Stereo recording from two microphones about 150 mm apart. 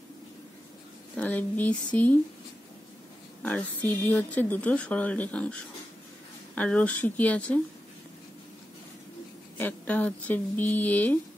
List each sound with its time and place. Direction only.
1.1 s speech: 10° left (ahead or behind)
3.4 s speech: 10° left (ahead or behind)
9.6 s speech: 10° left (ahead or behind)